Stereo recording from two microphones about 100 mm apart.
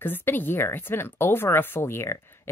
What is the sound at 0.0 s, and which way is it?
Speech, 20° left (ahead or behind).